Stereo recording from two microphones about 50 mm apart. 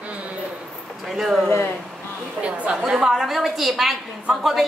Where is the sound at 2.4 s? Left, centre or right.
Right.